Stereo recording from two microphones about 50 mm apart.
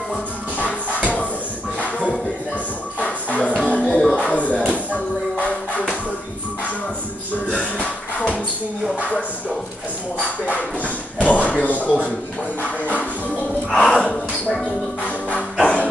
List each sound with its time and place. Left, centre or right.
1.8 s shuffle: left
3.0 s music: left
3.9 s music: centre
4.2 s music: left
5.4 s a sound: left
7.8 s music: left
11.1 s a sound: left
13.7 s a sound: centre
15.6 s music: left